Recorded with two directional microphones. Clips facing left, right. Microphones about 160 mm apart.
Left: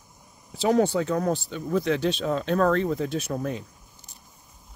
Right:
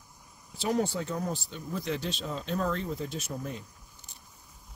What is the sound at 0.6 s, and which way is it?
Speech, 90° left.